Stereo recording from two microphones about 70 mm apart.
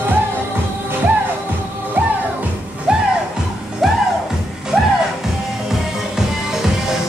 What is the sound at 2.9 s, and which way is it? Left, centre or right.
Music, centre.